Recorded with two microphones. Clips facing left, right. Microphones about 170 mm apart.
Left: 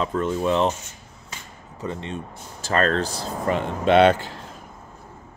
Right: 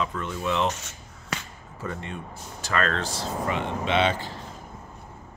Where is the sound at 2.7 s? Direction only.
35° left (ahead or behind); by 4.2 s 55° left (ahead or behind).